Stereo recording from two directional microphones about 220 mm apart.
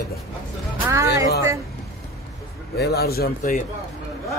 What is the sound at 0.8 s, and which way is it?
Speech, 15° right (ahead or behind).